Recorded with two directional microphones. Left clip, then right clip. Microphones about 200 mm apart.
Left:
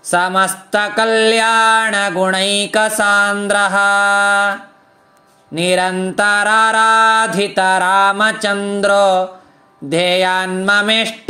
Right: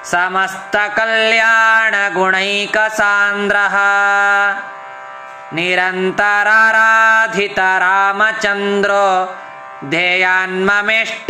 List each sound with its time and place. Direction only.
0.4 s mantra: 50° left (ahead or behind)
5.5 s mantra: 50° left (ahead or behind)